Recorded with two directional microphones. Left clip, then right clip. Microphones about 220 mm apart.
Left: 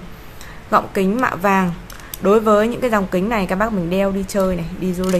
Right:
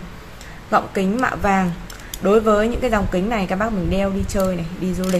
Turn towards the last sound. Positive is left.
turn(degrees=15)  # may be behind; listen again after turning